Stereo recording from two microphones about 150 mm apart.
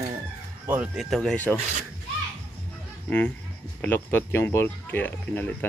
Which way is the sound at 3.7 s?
15° left (ahead or behind).